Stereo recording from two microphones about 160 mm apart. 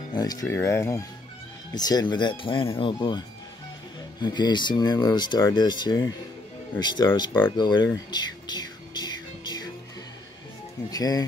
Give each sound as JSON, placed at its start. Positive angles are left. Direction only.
{"t": 0.1, "sound": "speech", "side_deg": 25}
{"t": 7.5, "sound": "music", "side_deg": 30}
{"t": 10.9, "sound": "speech", "side_deg": 25}